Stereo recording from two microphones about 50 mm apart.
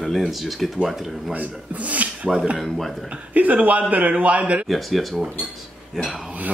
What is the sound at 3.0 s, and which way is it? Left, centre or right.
A man's voice, right.